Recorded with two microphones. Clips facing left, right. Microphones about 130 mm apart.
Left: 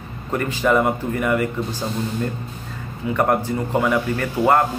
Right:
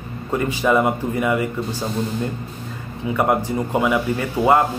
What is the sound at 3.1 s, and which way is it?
A man's voice, 15° right (ahead or behind).